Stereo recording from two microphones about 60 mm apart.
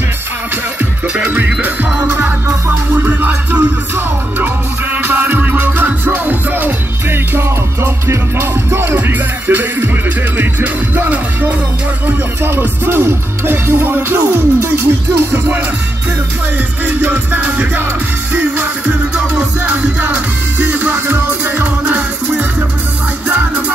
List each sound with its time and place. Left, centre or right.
1.3 s music: right
2.4 s music: right
3.1 s music: right
16.8 s music: right